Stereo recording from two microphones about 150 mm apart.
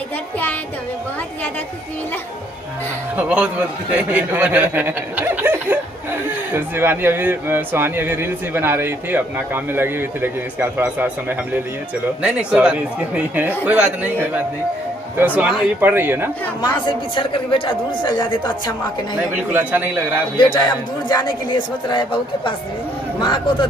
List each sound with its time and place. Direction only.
3.2 s speech: 10° right (ahead or behind)
16.8 s speech: 35° left (ahead or behind)
19.3 s speech: 10° right (ahead or behind)
20.3 s a woman's voice: 30° left (ahead or behind)